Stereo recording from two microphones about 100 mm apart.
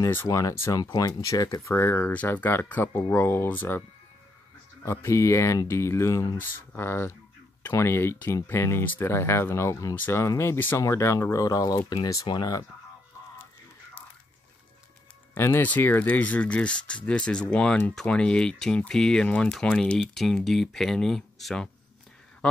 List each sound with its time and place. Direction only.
0.0 s speech: 25° left (ahead or behind)
0.3 s speech: 35° left (ahead or behind)
1.8 s speech: 25° left (ahead or behind)
4.8 s speech: 30° left (ahead or behind)
6.3 s speech: 20° left (ahead or behind); by 12.6 s 40° left (ahead or behind)
15.3 s speech: 20° left (ahead or behind); by 21.6 s 5° left (ahead or behind)